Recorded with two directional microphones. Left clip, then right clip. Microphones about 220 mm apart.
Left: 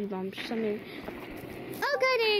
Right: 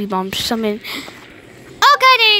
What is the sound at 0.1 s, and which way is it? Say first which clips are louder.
Speech: right 16 dB; 40° right (ahead or behind).